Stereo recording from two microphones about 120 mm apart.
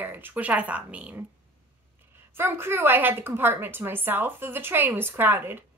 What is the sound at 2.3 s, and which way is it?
A woman's voice, 20° right (ahead or behind).